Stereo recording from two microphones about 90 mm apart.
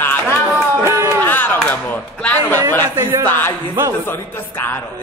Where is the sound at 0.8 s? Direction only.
30° right (ahead or behind).